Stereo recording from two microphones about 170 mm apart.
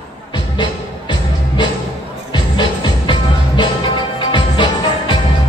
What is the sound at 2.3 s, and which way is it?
Music, 30° left (ahead or behind).